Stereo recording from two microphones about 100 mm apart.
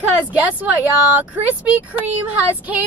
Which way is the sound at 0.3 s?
15° right (ahead or behind).